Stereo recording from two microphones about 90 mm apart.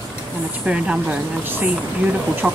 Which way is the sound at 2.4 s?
10° right (ahead or behind).